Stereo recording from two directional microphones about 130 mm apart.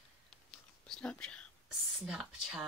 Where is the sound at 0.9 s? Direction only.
5° left (ahead or behind).